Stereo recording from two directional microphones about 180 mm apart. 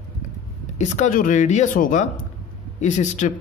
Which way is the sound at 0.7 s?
40° left (ahead or behind).